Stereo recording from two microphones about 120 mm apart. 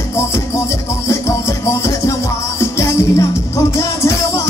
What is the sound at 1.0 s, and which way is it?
Music, 25° left (ahead or behind).